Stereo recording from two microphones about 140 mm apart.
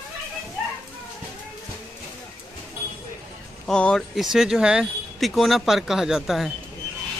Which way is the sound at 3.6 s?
5° left (ahead or behind).